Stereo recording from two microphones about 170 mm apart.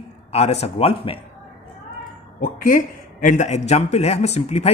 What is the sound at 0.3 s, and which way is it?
Speech, 40° left (ahead or behind).